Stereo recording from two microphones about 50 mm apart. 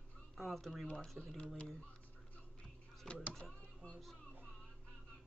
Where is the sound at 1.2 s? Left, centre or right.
Centre.